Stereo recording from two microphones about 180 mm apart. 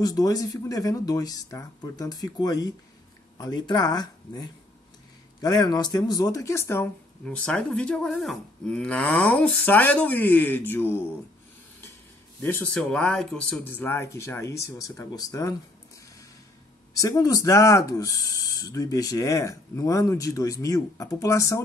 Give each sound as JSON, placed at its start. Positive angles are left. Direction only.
{"t": 0.0, "sound": "speech", "side_deg": 20}
{"t": 12.4, "sound": "speech", "side_deg": 15}
{"t": 17.0, "sound": "speech", "side_deg": 20}